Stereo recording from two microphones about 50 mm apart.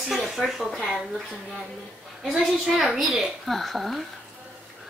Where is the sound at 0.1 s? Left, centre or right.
Centre.